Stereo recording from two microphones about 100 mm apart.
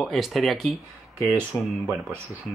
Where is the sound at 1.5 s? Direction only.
30° left (ahead or behind).